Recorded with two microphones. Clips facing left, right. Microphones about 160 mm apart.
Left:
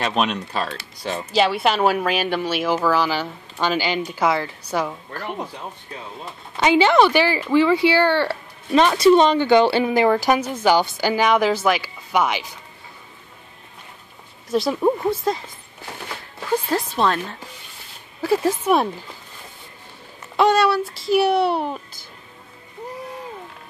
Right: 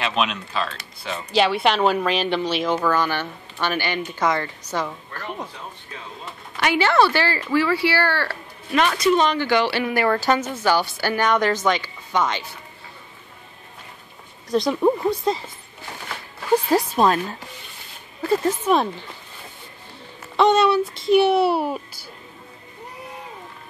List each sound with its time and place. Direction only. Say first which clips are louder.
0.0 s speech: left 2 dB; 40° left (ahead or behind)
1.3 s a woman's voice: even; centre (ahead or behind)
6.5 s speech: left 4 dB; 20° left (ahead or behind)
14.5 s speech: even; 5° left (ahead or behind)
17.0 s speech: right 2 dB; 10° right (ahead or behind)
18.2 s a woman's voice: left 1 dB; 5° left (ahead or behind)
20.3 s speech: even; 5° left (ahead or behind)